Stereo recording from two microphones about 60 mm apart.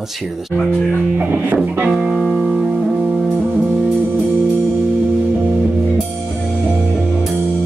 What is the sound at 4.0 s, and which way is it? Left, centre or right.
Music, right.